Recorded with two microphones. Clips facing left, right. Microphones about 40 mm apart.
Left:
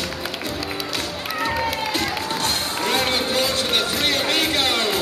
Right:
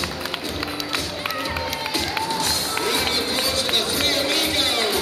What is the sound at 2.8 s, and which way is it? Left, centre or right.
Music, left.